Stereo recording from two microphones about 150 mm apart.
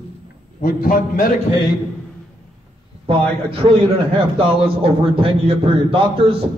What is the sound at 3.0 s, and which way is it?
A man's voice, 40° right (ahead or behind).